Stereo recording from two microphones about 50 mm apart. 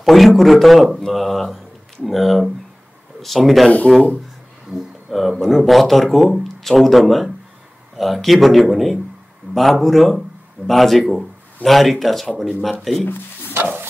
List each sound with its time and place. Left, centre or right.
0.0 s speech: centre
13.5 s music: right